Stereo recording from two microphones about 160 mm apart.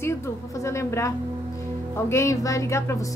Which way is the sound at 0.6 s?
20° left (ahead or behind).